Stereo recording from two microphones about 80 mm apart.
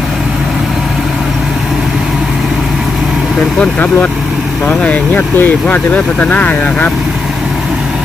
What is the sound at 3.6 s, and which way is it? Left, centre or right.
Speech, centre.